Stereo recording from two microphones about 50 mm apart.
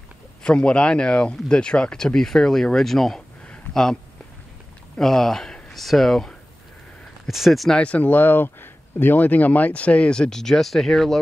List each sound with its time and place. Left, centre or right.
0.4 s speech: centre
5.0 s speech: centre
7.2 s speech: centre
7.7 s speech: left
8.0 s speech: left; by 11.1 s centre